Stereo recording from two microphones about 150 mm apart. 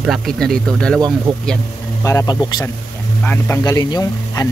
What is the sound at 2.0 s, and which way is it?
Speech, 20° left (ahead or behind).